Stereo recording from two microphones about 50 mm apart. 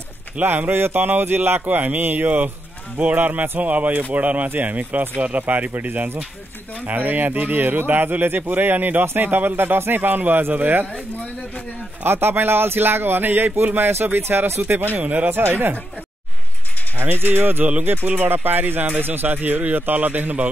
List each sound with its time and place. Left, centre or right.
0.4 s speech: right
12.0 s speech: right
15.3 s speech: right
17.0 s speech: right